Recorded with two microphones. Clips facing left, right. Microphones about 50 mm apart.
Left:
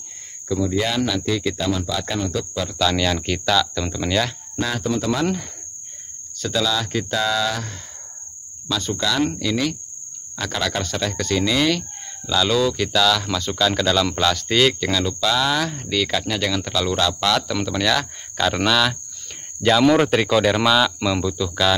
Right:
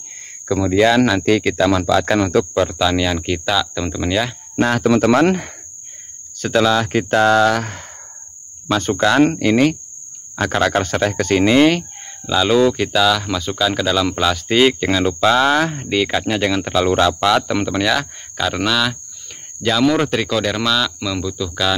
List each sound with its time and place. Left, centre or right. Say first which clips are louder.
0.5 s speech: right 8 dB; right
2.5 s speech: right 9 dB; right
2.8 s speech: right 3 dB; centre
4.6 s speech: right 8 dB; right
4.8 s speech: right 9 dB; right
6.4 s speech: right 7 dB; right
12.3 s speech: right 5 dB; right; by 21.7 s centre